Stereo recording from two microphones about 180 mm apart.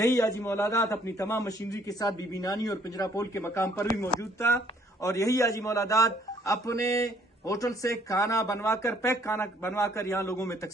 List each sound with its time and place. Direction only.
0.0 s a man's voice: 15° left (ahead or behind)